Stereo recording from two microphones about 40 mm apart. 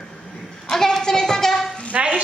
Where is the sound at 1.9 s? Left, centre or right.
Right.